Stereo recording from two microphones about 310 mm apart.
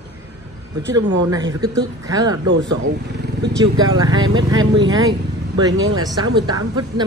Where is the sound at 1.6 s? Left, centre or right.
Centre.